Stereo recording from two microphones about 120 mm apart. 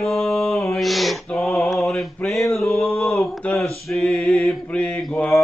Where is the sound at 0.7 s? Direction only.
Centre (ahead or behind).